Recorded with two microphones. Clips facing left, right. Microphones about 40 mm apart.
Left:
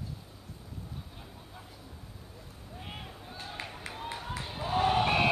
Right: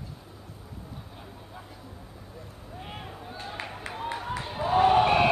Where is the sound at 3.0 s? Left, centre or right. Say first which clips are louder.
Right 5 dB; centre.